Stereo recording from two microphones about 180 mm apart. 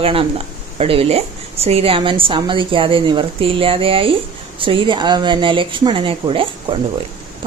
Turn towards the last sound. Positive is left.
turn(degrees=-30)  # may be behind; listen again after turning